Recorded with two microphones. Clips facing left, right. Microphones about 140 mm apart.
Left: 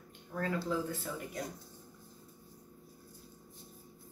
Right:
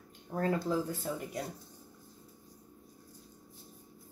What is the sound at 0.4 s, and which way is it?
Speech, 45° right (ahead or behind).